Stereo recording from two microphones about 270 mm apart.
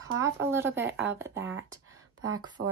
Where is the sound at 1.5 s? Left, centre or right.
Right.